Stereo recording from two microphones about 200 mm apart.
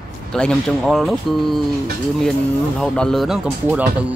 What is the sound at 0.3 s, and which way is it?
Speech, 5° left (ahead or behind).